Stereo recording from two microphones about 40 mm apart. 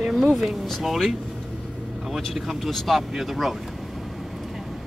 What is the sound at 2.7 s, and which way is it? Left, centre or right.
Speech, centre.